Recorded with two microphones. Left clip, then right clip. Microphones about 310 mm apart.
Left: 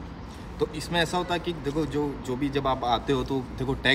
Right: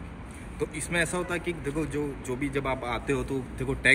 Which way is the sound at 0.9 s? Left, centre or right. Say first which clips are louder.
Left 2 dB; centre.